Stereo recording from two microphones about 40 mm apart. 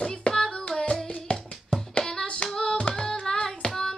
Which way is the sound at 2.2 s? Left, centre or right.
Left.